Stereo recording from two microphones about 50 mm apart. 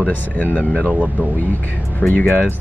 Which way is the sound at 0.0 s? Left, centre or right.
Left.